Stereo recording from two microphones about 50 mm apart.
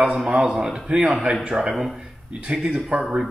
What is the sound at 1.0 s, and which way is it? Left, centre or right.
Speech, right.